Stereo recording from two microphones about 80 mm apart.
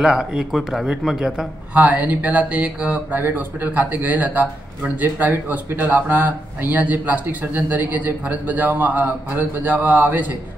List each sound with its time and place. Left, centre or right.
0.0 s speech: centre
1.7 s speech: centre